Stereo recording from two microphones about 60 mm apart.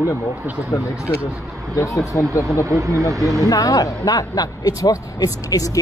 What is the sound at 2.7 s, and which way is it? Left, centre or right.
Speech, right.